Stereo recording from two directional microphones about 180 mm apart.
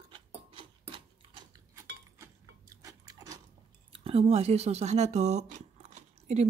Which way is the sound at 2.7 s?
20° right (ahead or behind).